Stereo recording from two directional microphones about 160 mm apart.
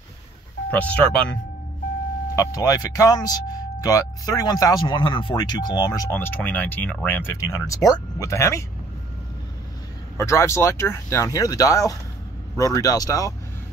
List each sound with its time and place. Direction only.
0.7 s speech: 10° left (ahead or behind)
2.3 s speech: 20° left (ahead or behind)
6.1 s speech: 10° left (ahead or behind)
10.1 s speech: 15° left (ahead or behind)